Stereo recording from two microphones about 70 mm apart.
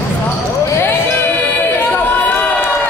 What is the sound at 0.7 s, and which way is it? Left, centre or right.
Chatter, left.